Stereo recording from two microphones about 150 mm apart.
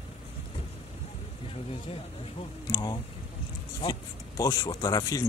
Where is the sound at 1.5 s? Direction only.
40° left (ahead or behind).